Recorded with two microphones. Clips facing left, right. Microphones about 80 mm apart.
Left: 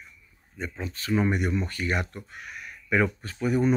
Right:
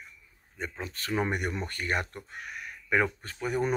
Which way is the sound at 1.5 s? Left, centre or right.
Right.